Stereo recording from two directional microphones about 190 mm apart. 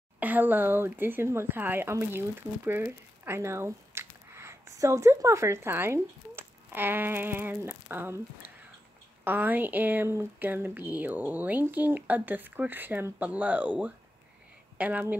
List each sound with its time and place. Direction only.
0.2 s speech: 10° right (ahead or behind)
8.4 s a sound: 50° left (ahead or behind)
9.2 s speech: 10° right (ahead or behind)